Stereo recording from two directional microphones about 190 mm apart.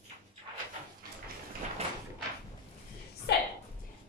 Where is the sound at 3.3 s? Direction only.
60° left (ahead or behind).